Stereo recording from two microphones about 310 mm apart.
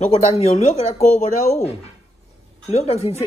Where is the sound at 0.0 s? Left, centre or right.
Left.